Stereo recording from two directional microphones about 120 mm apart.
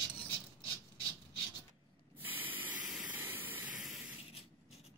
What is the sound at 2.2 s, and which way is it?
Spray, 15° right (ahead or behind).